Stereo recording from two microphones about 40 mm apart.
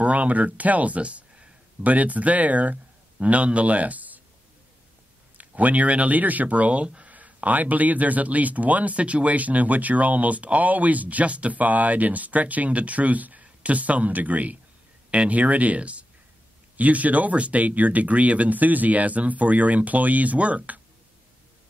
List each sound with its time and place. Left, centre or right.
0.0 s speech: right
5.4 s speech: right